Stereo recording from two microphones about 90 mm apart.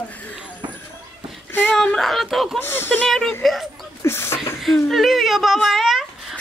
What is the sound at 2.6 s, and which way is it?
Speech, 25° left (ahead or behind).